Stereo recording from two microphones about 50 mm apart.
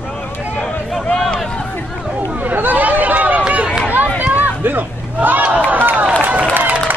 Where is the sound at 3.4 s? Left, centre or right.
Right.